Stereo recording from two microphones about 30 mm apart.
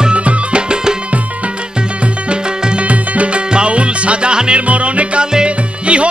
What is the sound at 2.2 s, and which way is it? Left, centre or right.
Music, right.